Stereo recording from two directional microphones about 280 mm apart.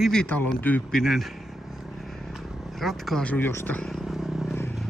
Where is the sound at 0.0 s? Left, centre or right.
Centre.